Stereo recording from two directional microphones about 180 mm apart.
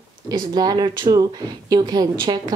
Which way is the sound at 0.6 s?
25° right (ahead or behind).